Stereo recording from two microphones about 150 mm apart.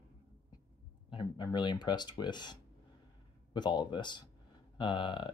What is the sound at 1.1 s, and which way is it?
Speech, 30° left (ahead or behind).